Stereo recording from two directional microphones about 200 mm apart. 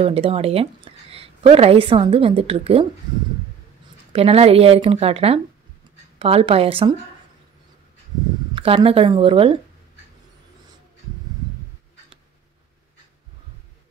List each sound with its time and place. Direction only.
0.0 s speech: 30° right (ahead or behind)
4.1 s speech: 30° right (ahead or behind)
8.5 s speech: 25° right (ahead or behind)